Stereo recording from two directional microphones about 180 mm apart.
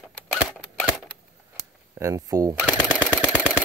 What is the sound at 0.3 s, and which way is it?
Single-lens reflex camera, centre (ahead or behind).